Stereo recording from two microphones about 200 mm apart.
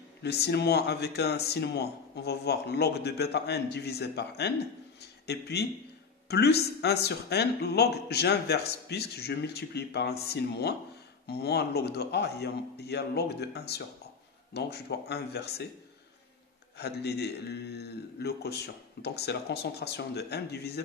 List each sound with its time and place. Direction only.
0.2 s a man's voice: 55° left (ahead or behind)
16.7 s speech: 55° left (ahead or behind)